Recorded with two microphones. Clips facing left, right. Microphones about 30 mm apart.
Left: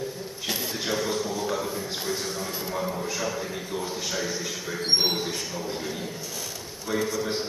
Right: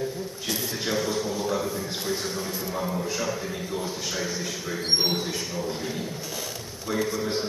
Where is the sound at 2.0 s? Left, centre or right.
Centre.